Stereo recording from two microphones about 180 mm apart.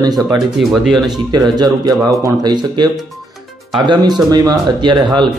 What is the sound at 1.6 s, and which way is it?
Speech, 20° right (ahead or behind).